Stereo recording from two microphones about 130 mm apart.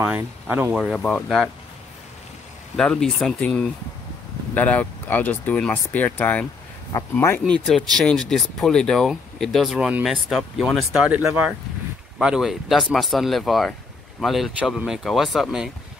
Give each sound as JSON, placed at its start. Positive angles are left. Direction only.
{"t": 0.0, "sound": "speech", "side_deg": -10}
{"t": 0.7, "sound": "speech", "side_deg": 5}
{"t": 2.8, "sound": "speech", "side_deg": 5}
{"t": 6.9, "sound": "speech", "side_deg": 25}
{"t": 7.6, "sound": "speech", "side_deg": 0}